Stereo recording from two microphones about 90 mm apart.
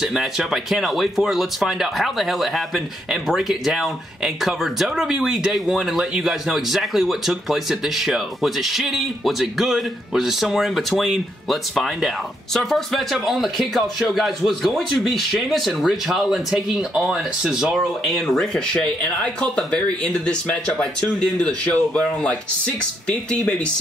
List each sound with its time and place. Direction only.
0.0 s speech: 5° right (ahead or behind); by 23.5 s 10° left (ahead or behind)